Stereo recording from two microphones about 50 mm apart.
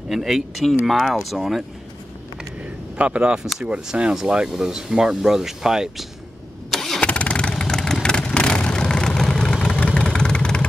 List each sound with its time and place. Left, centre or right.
0.1 s speech: centre
3.0 s speech: right
6.7 s engine starting: centre
7.0 s vehicle: left